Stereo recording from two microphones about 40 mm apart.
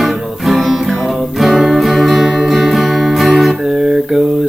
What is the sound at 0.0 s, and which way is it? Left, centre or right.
Music, centre.